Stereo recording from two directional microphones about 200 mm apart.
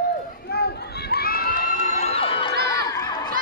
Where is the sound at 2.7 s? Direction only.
20° left (ahead or behind).